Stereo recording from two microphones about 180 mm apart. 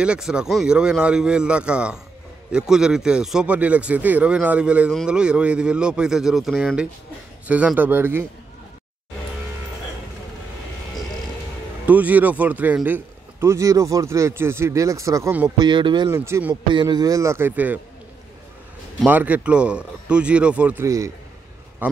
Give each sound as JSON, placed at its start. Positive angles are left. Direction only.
{"t": 0.0, "sound": "a man's voice", "side_deg": -5}
{"t": 11.8, "sound": "a man's voice", "side_deg": -10}
{"t": 15.5, "sound": "speech", "side_deg": -25}
{"t": 16.1, "sound": "a man's voice", "side_deg": -15}
{"t": 16.6, "sound": "a man's voice", "side_deg": -25}
{"t": 19.0, "sound": "a man's voice", "side_deg": -10}